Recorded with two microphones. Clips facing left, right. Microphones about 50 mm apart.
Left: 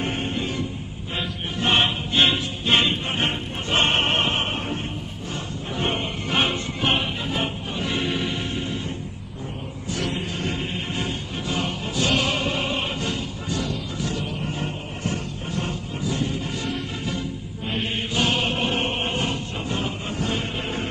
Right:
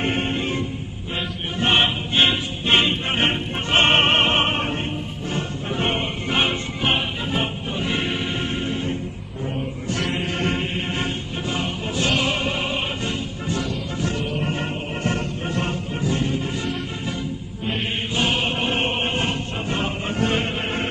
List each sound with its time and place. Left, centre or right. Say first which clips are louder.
0.0 s music: right 3 dB; right
1.6 s music: right 2 dB; right
3.1 s opera: right 4 dB; right
5.3 s music: right 4 dB; right
6.8 s music: right 1 dB; centre
7.3 s music: right 2 dB; right
10.2 s music: right 4 dB; right
12.5 s music: right 1 dB; centre
13.0 s music: right 1 dB; right
14.4 s music: right 4 dB; right
18.1 s music: right 1 dB; centre
18.7 s music: right 2 dB; right